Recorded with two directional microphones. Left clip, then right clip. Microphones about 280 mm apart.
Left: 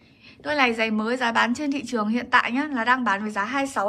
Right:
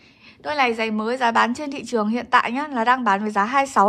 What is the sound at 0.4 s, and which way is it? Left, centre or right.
A woman's voice, centre.